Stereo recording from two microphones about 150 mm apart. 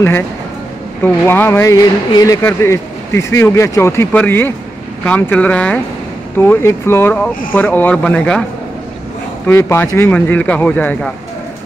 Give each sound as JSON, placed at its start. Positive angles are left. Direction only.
{"t": 1.0, "sound": "speech", "side_deg": 15}
{"t": 9.5, "sound": "speech", "side_deg": 15}